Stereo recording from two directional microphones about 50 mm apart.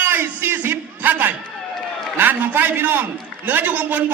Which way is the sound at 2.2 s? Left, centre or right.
Right.